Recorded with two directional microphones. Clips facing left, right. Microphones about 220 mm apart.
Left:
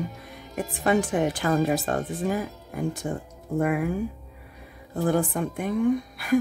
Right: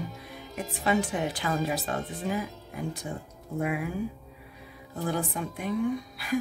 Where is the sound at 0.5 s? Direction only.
50° left (ahead or behind).